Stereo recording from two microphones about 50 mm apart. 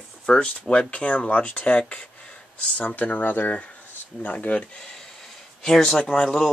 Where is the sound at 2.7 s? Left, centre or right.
Left.